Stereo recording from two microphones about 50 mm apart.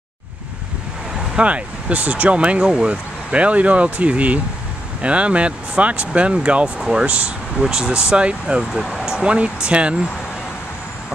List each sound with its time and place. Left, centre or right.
1.3 s speech: right